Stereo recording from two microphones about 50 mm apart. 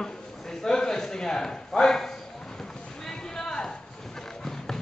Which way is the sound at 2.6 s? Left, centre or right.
Centre.